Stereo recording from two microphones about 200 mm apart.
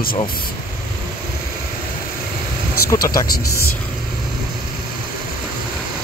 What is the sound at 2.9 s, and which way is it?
Speech, 15° left (ahead or behind).